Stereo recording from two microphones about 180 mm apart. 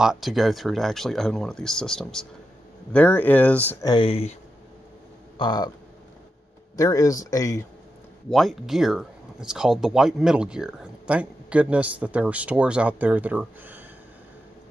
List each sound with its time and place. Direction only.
0.0 s speech: centre (ahead or behind)
3.8 s speech: 25° left (ahead or behind)
5.4 s speech: 25° left (ahead or behind)
6.8 s speech: 20° left (ahead or behind)
8.3 s speech: centre (ahead or behind)